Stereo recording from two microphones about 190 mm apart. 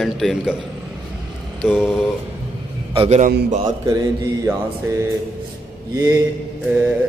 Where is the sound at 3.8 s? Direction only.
15° right (ahead or behind).